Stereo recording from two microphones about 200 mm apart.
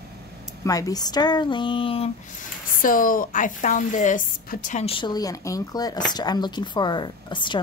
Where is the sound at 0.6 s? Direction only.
15° left (ahead or behind).